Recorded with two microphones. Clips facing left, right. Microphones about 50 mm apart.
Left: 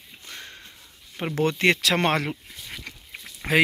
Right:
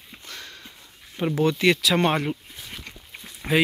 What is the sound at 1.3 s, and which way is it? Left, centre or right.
Speech, left.